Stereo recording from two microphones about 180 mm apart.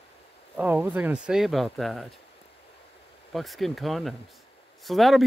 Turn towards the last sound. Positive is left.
turn(degrees=0)  # may be behind; listen again after turning